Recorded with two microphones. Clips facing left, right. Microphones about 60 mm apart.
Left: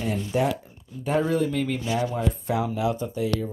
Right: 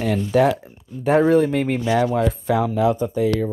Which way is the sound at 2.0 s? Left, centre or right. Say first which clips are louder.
Right 7 dB; right.